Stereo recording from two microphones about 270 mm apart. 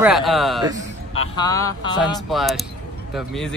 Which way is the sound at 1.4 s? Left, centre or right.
Centre.